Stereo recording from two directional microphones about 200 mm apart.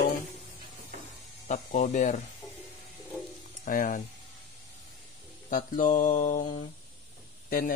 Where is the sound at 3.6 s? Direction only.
40° left (ahead or behind).